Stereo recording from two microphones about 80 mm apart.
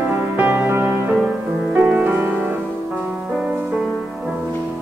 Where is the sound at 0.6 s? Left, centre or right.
Right.